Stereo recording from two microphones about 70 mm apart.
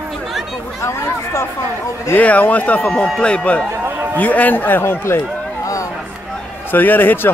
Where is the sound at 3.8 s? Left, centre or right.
Right.